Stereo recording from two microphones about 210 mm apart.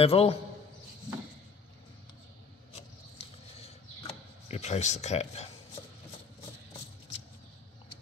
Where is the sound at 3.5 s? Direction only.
30° left (ahead or behind).